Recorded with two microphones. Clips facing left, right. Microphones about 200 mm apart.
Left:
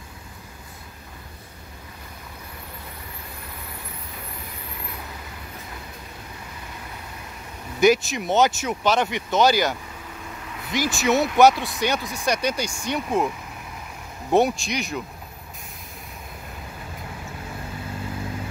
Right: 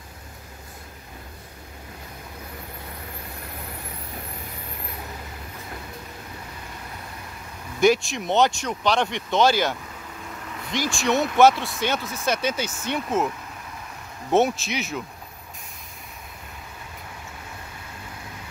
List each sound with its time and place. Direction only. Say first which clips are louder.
7.8 s speech: left 1 dB; centre (ahead or behind)
14.3 s speech: left 1 dB; centre (ahead or behind)